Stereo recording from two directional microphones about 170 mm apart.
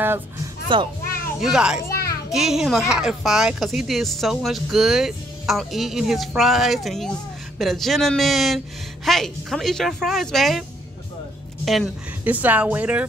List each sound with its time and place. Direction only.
0.7 s a child's voice: 25° right (ahead or behind)
1.4 s speech: 5° right (ahead or behind)
11.6 s speech: centre (ahead or behind)